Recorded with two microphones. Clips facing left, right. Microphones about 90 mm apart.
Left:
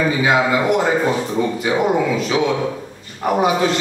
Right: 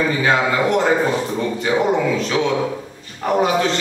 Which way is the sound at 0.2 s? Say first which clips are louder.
Left 1 dB; 10° left (ahead or behind).